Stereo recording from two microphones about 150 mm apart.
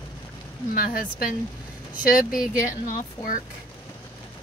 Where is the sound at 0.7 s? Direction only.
70° left (ahead or behind).